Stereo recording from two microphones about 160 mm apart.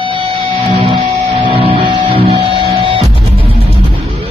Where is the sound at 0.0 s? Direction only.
35° right (ahead or behind).